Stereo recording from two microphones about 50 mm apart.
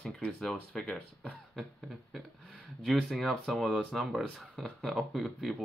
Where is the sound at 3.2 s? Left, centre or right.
Centre.